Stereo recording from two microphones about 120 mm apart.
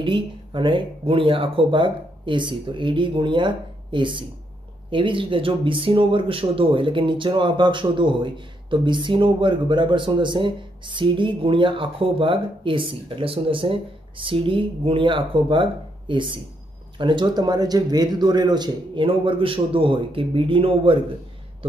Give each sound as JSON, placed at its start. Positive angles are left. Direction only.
{"t": 0.0, "sound": "speech", "side_deg": -45}